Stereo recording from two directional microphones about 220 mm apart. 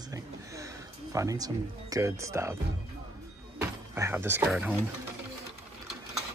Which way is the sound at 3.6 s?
10° right (ahead or behind).